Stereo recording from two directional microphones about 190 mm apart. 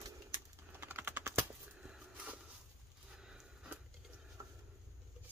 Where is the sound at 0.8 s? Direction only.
10° right (ahead or behind).